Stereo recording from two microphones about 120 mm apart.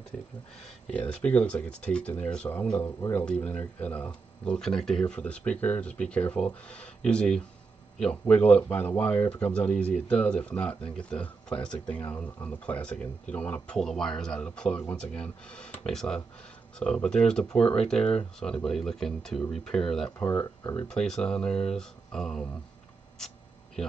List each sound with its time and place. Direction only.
0.8 s speech: 10° left (ahead or behind)
20.2 s speech: 25° left (ahead or behind)
20.9 s speech: 5° left (ahead or behind)